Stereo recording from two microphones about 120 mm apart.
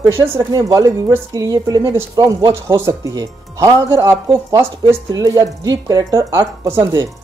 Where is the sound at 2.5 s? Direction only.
20° right (ahead or behind).